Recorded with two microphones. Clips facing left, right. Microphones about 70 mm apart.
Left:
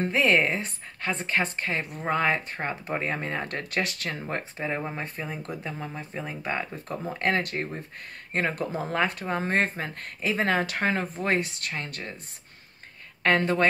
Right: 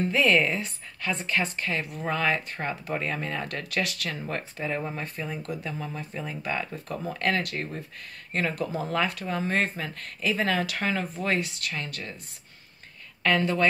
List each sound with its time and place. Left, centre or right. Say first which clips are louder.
0.0 s speech: even; left
13.2 s speech: left 1 dB; left